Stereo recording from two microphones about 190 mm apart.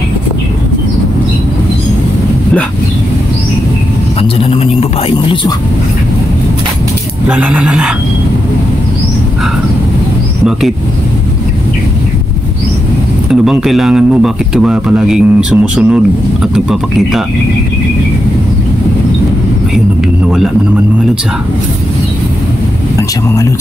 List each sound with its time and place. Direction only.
4.2 s speech: 30° left (ahead or behind)
7.2 s speech: 5° right (ahead or behind)
13.3 s speech: centre (ahead or behind)